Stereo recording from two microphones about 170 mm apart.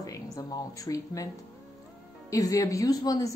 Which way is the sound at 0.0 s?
20° left (ahead or behind).